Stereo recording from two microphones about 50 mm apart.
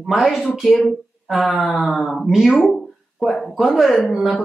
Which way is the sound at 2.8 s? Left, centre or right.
Centre.